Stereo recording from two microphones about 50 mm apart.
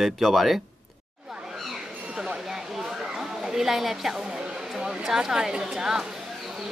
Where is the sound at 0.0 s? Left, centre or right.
Centre.